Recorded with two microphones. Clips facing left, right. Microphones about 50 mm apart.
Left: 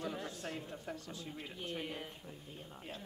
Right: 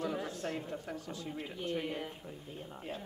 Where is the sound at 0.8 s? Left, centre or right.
Centre.